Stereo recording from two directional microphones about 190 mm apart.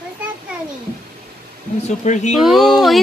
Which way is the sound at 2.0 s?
40° left (ahead or behind).